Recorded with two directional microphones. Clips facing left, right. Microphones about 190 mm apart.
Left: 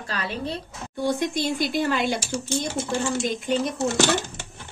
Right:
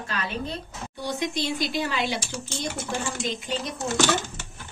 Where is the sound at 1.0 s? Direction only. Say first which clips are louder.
Left 4 dB; 50° left (ahead or behind).